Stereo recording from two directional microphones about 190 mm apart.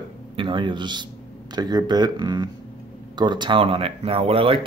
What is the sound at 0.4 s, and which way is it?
Speech, 25° right (ahead or behind).